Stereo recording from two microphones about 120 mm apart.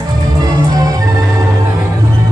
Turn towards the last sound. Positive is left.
turn(degrees=-30)  # may be behind; listen again after turning